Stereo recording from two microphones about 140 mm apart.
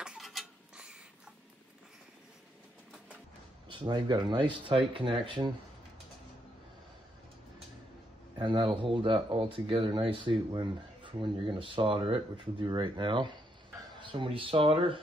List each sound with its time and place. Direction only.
0.0 s a sound: 5° right (ahead or behind)
3.6 s speech: 35° right (ahead or behind)
8.4 s speech: 35° right (ahead or behind)